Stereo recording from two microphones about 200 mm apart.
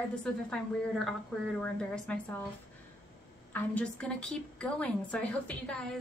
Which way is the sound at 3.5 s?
5° left (ahead or behind).